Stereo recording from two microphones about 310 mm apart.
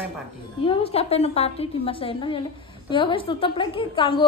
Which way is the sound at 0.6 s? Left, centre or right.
Centre.